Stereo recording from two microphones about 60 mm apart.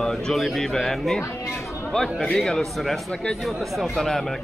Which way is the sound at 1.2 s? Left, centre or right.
Left.